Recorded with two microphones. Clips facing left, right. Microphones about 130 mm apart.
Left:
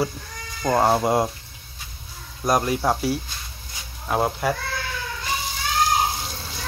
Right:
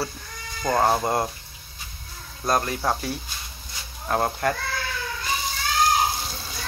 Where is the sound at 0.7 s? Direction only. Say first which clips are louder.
Left 2 dB; 5° left (ahead or behind).